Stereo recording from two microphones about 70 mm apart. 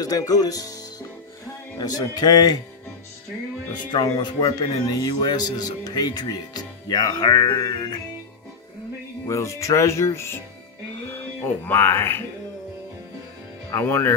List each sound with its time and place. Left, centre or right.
0.0 s speech: left
1.8 s speech: left
4.2 s speech: left
9.3 s speech: left
13.7 s speech: left